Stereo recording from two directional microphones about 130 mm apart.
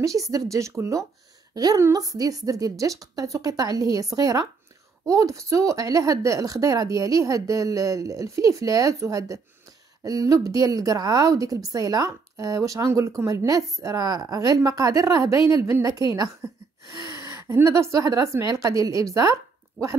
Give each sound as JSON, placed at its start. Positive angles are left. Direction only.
{"t": 0.0, "sound": "a woman's voice", "side_deg": -25}